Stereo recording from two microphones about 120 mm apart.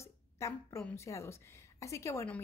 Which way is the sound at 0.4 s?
25° left (ahead or behind).